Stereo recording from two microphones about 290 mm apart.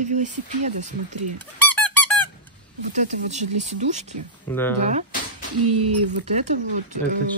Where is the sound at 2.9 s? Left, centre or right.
Right.